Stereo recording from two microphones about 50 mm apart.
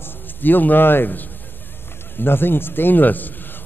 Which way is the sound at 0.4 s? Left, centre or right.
Left.